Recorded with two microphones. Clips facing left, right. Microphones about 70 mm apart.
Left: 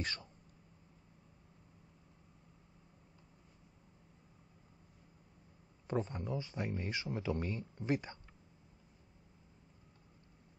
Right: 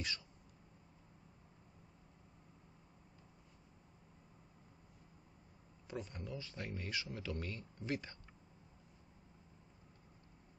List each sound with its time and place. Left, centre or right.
0.0 s speech: left
5.9 s speech: left